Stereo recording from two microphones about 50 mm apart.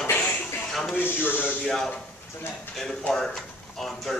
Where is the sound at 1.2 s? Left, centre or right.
Left.